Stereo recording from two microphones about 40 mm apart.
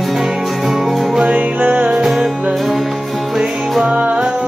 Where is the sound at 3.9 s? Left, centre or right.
Right.